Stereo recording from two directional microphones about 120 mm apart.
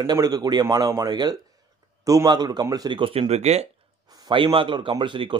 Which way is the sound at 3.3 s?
65° right (ahead or behind).